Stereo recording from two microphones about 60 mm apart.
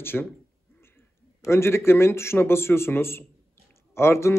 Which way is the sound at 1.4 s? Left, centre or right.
Left.